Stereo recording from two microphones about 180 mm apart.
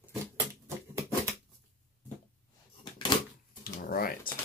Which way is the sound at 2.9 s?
25° left (ahead or behind).